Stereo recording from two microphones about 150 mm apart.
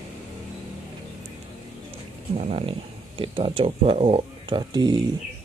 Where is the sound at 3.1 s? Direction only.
35° right (ahead or behind).